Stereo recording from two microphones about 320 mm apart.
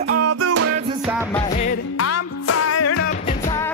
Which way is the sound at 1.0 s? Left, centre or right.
Centre.